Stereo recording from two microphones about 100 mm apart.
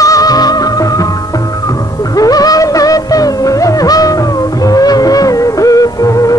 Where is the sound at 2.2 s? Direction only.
40° left (ahead or behind).